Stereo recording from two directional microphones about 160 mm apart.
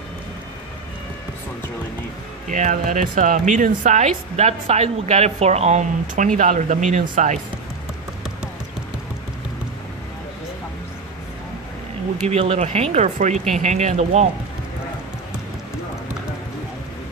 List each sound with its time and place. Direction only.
2.5 s speech: 50° right (ahead or behind)
12.3 s speech: 40° right (ahead or behind)